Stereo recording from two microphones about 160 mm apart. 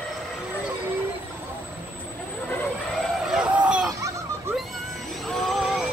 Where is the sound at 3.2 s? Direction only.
5° right (ahead or behind).